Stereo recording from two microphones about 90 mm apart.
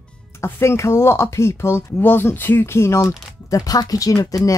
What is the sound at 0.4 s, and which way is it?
Speech, 30° left (ahead or behind).